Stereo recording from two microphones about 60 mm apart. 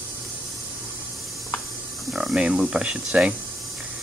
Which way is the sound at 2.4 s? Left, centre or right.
Centre.